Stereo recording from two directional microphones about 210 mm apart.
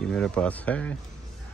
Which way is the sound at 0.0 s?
5° left (ahead or behind).